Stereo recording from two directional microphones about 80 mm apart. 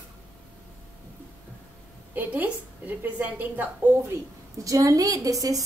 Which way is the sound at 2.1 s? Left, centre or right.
Centre.